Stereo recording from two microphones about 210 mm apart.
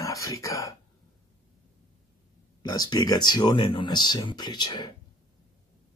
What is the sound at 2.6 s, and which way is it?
Speech, 20° left (ahead or behind).